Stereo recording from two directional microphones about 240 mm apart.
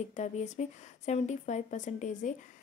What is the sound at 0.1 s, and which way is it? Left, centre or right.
A woman's voice, left.